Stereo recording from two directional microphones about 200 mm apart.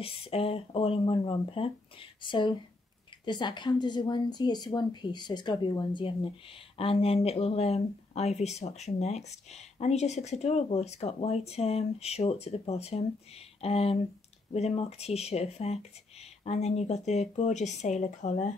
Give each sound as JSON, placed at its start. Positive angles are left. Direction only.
{"t": 0.0, "sound": "a woman's voice", "side_deg": 30}